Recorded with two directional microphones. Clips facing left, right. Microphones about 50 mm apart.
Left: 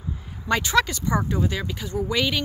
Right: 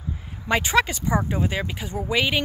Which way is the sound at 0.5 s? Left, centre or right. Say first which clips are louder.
Even; centre.